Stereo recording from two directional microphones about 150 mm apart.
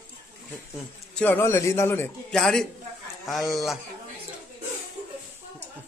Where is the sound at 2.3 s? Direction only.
5° left (ahead or behind).